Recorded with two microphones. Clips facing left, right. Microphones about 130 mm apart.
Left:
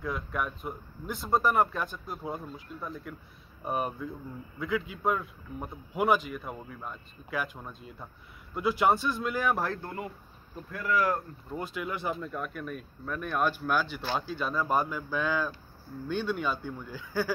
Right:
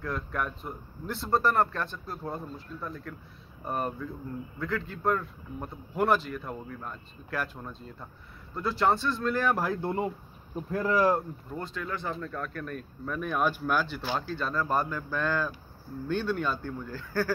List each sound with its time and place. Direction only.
0.0 s a man's voice: 5° left (ahead or behind)
9.8 s speech: 30° right (ahead or behind)
11.5 s a man's voice: 15° left (ahead or behind)